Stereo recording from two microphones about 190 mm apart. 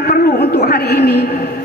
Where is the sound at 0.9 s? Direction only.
55° left (ahead or behind).